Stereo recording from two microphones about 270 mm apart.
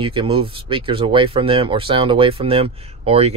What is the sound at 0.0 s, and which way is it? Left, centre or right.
Speech, centre.